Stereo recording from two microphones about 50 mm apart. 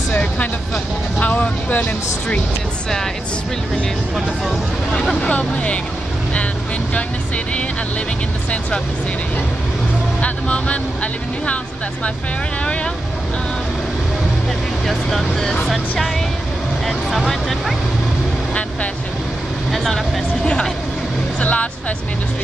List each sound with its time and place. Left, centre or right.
0.1 s music: left
1.2 s speech: left
5.2 s speech: left
6.9 s speech: left
10.2 s speech: left
14.9 s speech: centre
16.8 s speech: centre
19.7 s speech: centre
21.4 s speech: left